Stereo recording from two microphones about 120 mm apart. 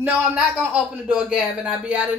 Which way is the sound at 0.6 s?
10° right (ahead or behind).